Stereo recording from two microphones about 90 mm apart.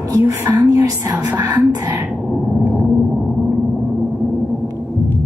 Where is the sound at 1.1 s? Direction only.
25° right (ahead or behind).